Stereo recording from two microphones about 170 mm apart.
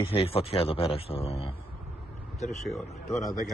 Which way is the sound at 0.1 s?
35° left (ahead or behind).